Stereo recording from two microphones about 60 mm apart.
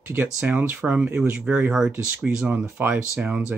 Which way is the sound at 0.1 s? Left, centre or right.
Right.